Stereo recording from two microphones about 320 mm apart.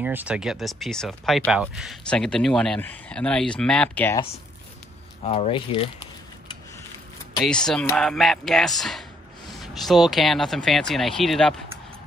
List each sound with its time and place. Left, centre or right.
0.0 s speech: centre
7.4 s speech: centre